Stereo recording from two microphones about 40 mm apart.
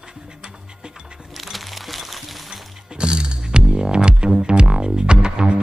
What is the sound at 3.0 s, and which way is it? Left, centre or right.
Music, right.